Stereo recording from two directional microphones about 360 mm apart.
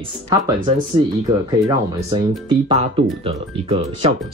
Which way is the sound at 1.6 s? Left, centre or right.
Centre.